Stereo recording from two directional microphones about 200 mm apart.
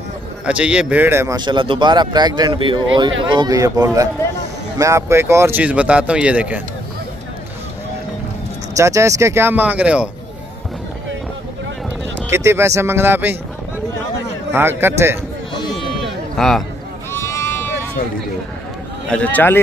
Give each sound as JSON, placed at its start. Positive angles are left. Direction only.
{"t": 0.5, "sound": "speech", "side_deg": -5}
{"t": 8.7, "sound": "speech", "side_deg": -15}
{"t": 12.3, "sound": "speech", "side_deg": -15}
{"t": 14.5, "sound": "speech", "side_deg": -10}
{"t": 16.3, "sound": "a man's voice", "side_deg": 0}
{"t": 17.1, "sound": "sheep", "side_deg": 15}
{"t": 19.0, "sound": "a man's voice", "side_deg": 5}